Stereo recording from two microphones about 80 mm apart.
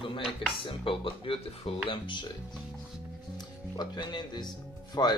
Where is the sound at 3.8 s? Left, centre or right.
Left.